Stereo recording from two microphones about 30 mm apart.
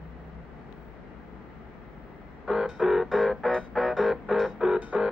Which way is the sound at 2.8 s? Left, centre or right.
Centre.